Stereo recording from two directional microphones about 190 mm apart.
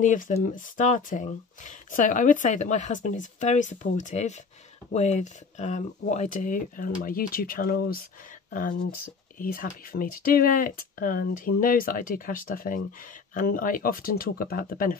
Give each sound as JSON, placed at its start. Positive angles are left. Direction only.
{"t": 0.0, "sound": "speech", "side_deg": 40}